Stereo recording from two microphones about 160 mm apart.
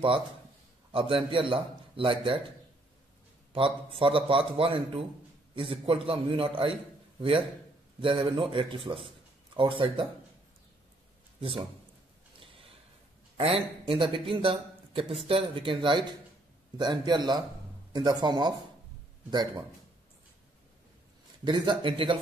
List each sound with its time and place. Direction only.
0.9 s a man's voice: 35° right (ahead or behind)
3.5 s a man's voice: 35° right (ahead or behind)
13.4 s a man's voice: 35° right (ahead or behind)
21.5 s a man's voice: 30° right (ahead or behind)